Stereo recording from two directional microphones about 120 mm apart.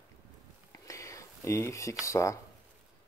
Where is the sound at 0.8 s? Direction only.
25° left (ahead or behind).